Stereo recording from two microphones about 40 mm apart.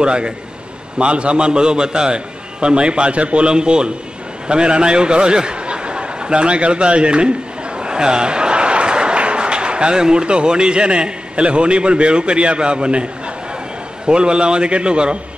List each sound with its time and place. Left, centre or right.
0.0 s a man's voice: right